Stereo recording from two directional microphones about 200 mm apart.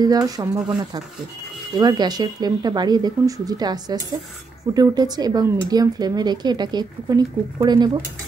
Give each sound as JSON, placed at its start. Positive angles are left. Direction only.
{"t": 0.0, "sound": "speech", "side_deg": -20}